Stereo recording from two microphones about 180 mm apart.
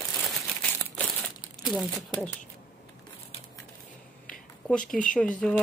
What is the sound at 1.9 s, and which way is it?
Speech, 10° left (ahead or behind).